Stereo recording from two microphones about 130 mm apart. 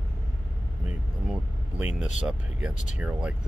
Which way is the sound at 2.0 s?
5° right (ahead or behind).